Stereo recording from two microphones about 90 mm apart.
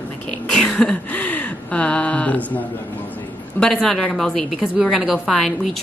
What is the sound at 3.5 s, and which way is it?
A woman's voice, 5° left (ahead or behind).